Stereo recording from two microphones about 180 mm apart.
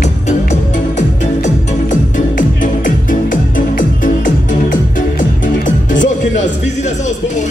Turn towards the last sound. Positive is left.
turn(degrees=45)  # may be behind; listen again after turning